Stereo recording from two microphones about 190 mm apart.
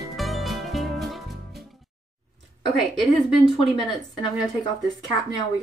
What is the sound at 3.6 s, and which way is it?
A woman's voice, 20° left (ahead or behind).